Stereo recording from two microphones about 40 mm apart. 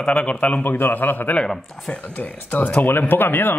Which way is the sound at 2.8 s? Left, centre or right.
Left.